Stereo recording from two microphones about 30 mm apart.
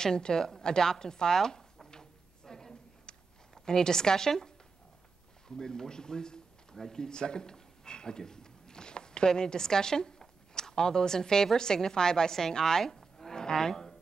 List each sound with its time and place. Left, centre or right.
0.0 s a woman's voice: left
2.4 s a sound: centre
5.6 s a woman's voice: left